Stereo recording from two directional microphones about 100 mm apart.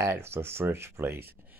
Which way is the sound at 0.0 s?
25° right (ahead or behind).